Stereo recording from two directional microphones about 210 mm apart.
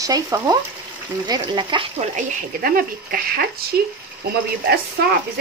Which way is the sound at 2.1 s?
45° right (ahead or behind).